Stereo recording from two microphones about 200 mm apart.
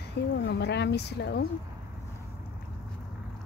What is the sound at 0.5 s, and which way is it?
Speech, 60° left (ahead or behind).